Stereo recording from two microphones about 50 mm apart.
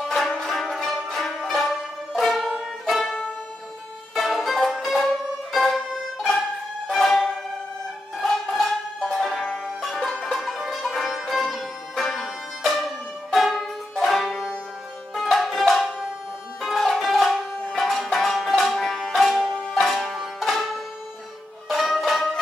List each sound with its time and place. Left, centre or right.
0.0 s music: centre
8.5 s music: centre
9.3 s music: centre
9.8 s music: centre